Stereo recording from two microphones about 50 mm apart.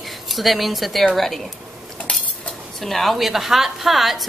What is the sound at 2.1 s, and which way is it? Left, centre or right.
Cutlery, centre.